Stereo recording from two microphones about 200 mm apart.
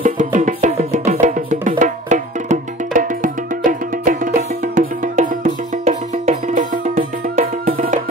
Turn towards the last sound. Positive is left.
turn(degrees=-40)  # may be behind; listen again after turning